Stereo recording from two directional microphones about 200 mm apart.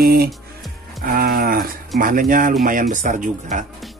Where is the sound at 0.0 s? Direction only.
50° right (ahead or behind).